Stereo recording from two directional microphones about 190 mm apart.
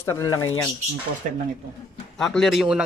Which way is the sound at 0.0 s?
15° left (ahead or behind).